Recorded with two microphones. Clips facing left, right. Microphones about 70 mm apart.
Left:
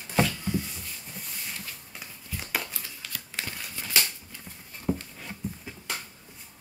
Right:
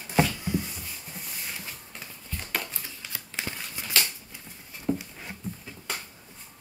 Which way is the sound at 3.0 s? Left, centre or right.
Centre.